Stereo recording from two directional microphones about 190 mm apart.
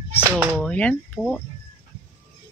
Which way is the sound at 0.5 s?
5° left (ahead or behind).